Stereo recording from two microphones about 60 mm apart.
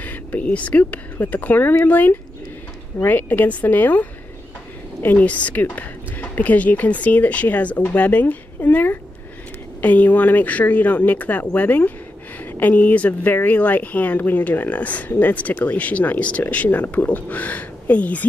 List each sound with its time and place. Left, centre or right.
0.0 s a woman's voice: left